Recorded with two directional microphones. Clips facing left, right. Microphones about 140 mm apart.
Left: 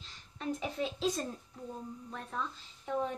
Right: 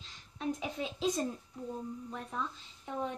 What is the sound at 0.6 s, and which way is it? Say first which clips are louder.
A woman's voice: left 1 dB; 5° right (ahead or behind).